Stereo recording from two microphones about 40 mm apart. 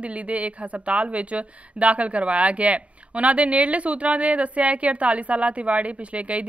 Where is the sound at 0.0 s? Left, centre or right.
Right.